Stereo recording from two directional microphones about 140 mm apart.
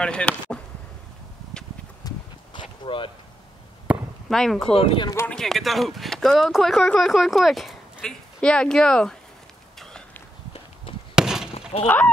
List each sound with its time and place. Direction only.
0.0 s speech: 10° left (ahead or behind)
1.5 s a sound: 5° left (ahead or behind)
2.0 s clip-clop: 25° left (ahead or behind)
2.8 s speech: 35° left (ahead or behind)
3.9 s chop: 10° right (ahead or behind)
4.3 s speech: centre (ahead or behind)
4.7 s speech: 40° left (ahead or behind)
5.3 s speech: 5° left (ahead or behind)
11.1 s glass: 5° right (ahead or behind)
11.7 s fowl: 50° left (ahead or behind)